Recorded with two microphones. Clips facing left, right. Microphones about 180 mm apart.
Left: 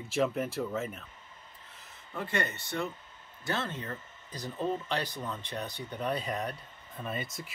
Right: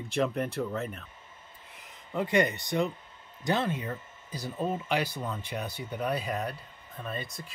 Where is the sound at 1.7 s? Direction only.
15° right (ahead or behind).